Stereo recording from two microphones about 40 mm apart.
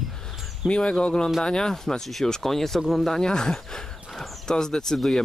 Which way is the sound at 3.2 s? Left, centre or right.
Centre.